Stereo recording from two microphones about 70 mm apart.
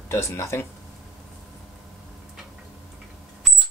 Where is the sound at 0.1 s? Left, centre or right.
Left.